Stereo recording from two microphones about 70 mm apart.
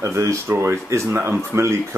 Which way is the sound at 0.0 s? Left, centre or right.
Right.